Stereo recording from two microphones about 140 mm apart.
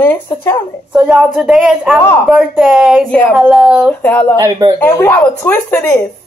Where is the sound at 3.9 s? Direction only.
10° left (ahead or behind).